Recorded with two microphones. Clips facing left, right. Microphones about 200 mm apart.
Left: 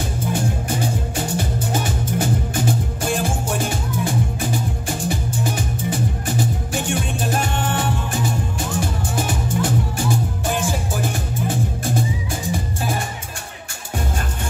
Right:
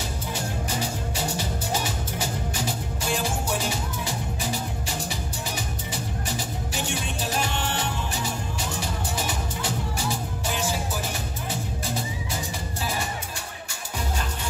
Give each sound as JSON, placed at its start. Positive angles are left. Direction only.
{"t": 0.3, "sound": "music", "side_deg": 50}